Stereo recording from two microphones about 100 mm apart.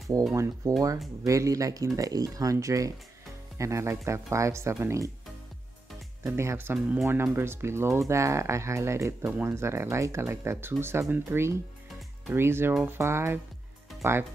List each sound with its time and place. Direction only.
0.3 s speech: 30° right (ahead or behind)
6.2 s speech: 25° right (ahead or behind)